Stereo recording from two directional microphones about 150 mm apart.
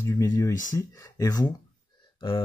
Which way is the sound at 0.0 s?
25° left (ahead or behind).